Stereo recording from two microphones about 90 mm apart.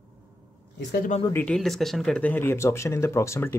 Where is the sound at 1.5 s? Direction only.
5° left (ahead or behind).